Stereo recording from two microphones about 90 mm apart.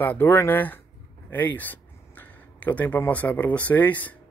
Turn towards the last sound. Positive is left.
turn(degrees=20)  # may be behind; listen again after turning